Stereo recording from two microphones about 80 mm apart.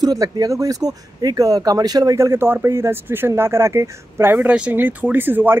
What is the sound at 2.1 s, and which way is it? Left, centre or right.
Speech, right.